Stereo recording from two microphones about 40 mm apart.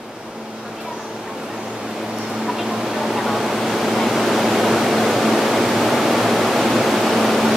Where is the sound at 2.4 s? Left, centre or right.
Centre.